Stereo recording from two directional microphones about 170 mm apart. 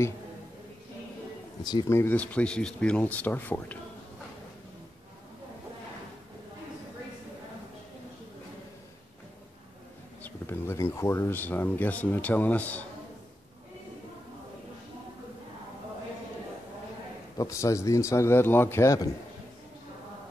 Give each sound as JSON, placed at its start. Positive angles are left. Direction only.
{"t": 1.6, "sound": "speech", "side_deg": 25}
{"t": 10.2, "sound": "speech", "side_deg": 15}
{"t": 17.4, "sound": "speech", "side_deg": 20}